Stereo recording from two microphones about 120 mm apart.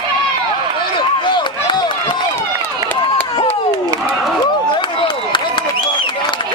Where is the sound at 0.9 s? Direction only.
40° left (ahead or behind).